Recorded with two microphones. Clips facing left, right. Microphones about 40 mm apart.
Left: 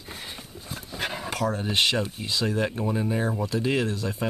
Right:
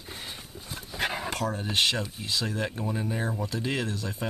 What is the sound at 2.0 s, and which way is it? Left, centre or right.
Speech, centre.